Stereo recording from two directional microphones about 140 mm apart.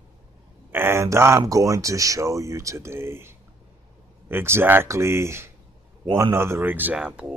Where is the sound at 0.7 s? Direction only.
15° right (ahead or behind).